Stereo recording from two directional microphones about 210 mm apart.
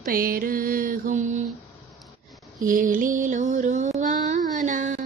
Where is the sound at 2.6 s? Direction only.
40° right (ahead or behind).